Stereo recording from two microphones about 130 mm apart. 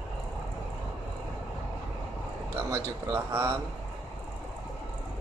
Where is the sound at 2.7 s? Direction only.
25° right (ahead or behind).